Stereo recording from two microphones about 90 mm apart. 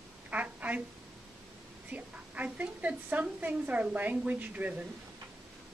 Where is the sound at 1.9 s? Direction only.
15° right (ahead or behind).